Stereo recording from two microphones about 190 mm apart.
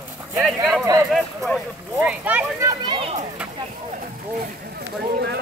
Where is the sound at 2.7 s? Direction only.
25° right (ahead or behind).